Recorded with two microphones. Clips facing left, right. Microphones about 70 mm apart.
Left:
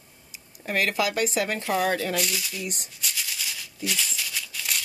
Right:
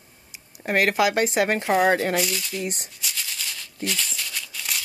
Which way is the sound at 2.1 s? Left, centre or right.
Centre.